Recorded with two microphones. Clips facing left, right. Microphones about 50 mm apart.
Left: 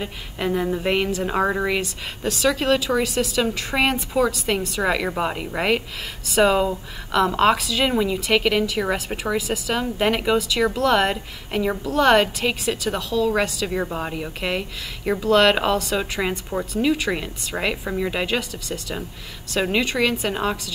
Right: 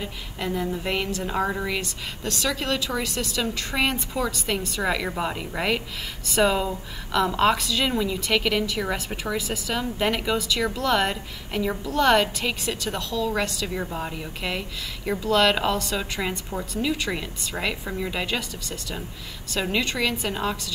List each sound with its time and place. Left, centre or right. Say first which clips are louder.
0.0 s a woman's voice: left 4 dB; centre
2.2 s a woman's voice: left 7 dB; centre
13.7 s a woman's voice: left 6 dB; centre
16.0 s a woman's voice: left 4 dB; centre